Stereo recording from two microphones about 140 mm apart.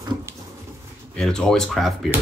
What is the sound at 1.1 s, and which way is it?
Speech, 5° left (ahead or behind).